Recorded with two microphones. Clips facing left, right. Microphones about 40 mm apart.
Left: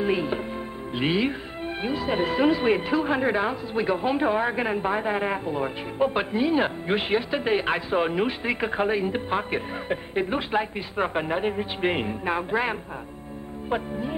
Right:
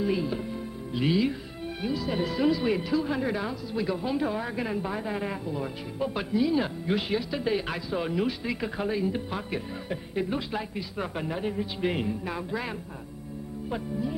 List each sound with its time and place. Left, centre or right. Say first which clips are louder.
0.0 s music: left 3 dB; left
0.9 s speech: left 1 dB; left